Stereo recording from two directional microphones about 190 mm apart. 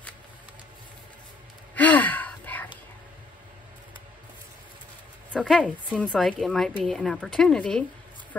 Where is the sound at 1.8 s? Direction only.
10° left (ahead or behind).